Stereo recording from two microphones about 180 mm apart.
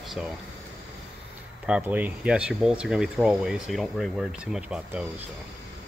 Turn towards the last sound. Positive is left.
turn(degrees=-5)  # may be behind; listen again after turning